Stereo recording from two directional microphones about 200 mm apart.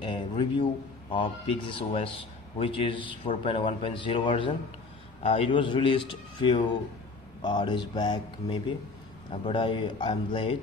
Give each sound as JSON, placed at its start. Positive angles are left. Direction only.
{"t": 0.0, "sound": "a man's voice", "side_deg": 25}